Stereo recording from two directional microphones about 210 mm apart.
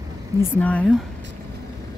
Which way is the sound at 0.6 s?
5° left (ahead or behind).